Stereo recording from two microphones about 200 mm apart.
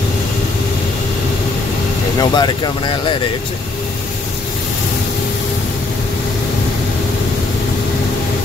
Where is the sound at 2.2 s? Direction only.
20° left (ahead or behind).